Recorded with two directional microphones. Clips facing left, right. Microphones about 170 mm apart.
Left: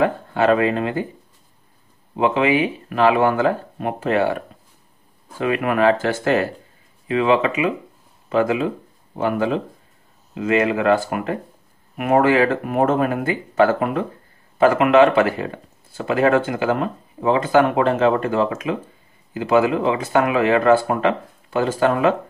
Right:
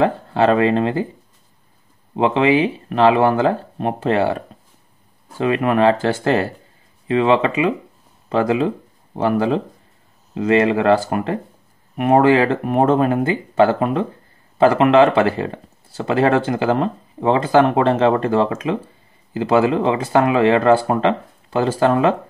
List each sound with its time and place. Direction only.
0.0 s speech: 30° right (ahead or behind)
2.1 s speech: 30° right (ahead or behind)
5.4 s speech: 30° right (ahead or behind)